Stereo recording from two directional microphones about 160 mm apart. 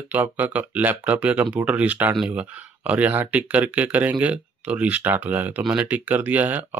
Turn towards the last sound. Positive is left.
turn(degrees=-10)  # may be behind; listen again after turning